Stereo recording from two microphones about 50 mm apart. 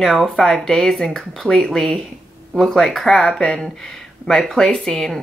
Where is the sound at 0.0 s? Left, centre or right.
Centre.